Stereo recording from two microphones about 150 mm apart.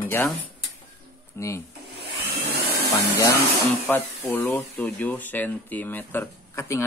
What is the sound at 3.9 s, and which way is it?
Speech, 15° left (ahead or behind).